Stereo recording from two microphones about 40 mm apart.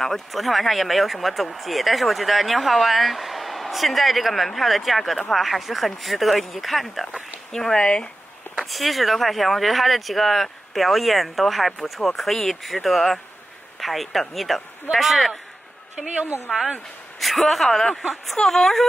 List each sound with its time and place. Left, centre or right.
0.0 s speech: centre
7.5 s speech: centre
8.5 s a man's voice: centre
17.2 s speech: centre